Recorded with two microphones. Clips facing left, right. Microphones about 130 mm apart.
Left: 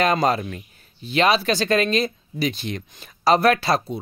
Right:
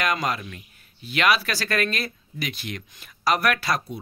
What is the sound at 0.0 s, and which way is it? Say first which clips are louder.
Speech: left 6 dB; 30° left (ahead or behind).